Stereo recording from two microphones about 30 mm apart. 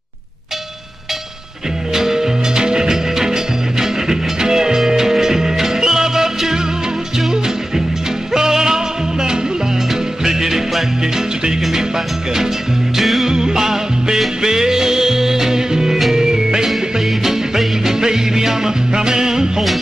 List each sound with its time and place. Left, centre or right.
2.0 s music: centre
12.9 s music: centre
13.3 s music: right
17.2 s music: centre